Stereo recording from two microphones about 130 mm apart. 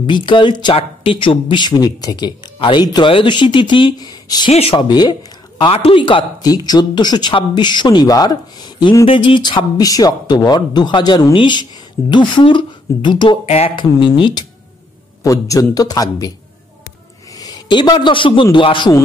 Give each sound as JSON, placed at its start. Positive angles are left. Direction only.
{"t": 0.0, "sound": "speech", "side_deg": 35}
{"t": 4.5, "sound": "speech", "side_deg": 50}
{"t": 4.7, "sound": "speech", "side_deg": 35}
{"t": 5.6, "sound": "speech", "side_deg": 45}
{"t": 13.5, "sound": "speech", "side_deg": 55}
{"t": 13.7, "sound": "speech", "side_deg": 40}
{"t": 15.2, "sound": "a man's voice", "side_deg": 25}